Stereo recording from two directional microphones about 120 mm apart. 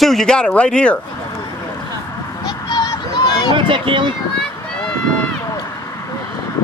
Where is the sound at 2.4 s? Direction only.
40° left (ahead or behind).